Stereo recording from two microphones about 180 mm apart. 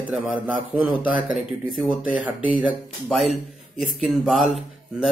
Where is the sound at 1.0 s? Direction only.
50° left (ahead or behind).